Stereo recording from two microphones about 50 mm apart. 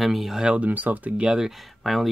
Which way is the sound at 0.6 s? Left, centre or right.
Right.